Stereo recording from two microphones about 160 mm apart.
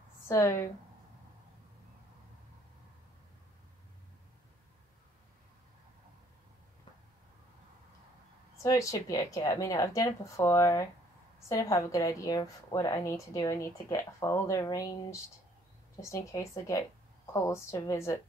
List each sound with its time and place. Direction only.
0.3 s a woman's voice: 15° left (ahead or behind)
8.6 s a woman's voice: 20° left (ahead or behind)